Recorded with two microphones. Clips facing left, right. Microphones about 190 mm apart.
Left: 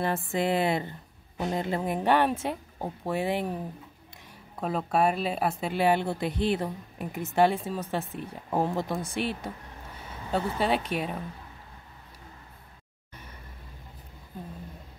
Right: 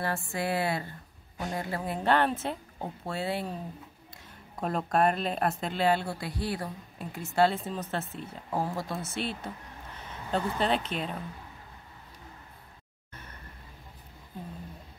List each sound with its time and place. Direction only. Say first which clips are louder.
0.3 s a woman's voice: left 5 dB; 20° left (ahead or behind)
4.6 s speech: left 1 dB; centre (ahead or behind)
13.1 s a sound: left 1 dB; 10° left (ahead or behind)